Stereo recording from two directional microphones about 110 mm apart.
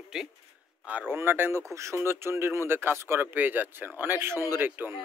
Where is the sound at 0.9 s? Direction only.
15° right (ahead or behind).